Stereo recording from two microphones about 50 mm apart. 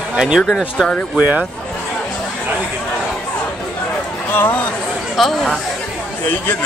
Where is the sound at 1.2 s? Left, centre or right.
Right.